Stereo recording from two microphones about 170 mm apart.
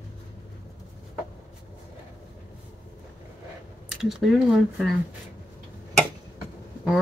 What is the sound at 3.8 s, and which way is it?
Speech, centre (ahead or behind).